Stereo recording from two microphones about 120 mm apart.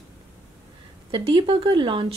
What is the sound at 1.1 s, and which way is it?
Speech, 45° right (ahead or behind).